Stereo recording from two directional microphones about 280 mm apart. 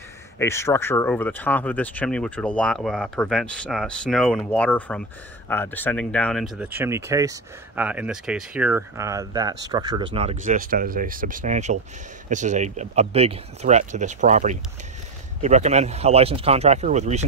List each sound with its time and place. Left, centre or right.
0.4 s speech: centre; by 17.2 s right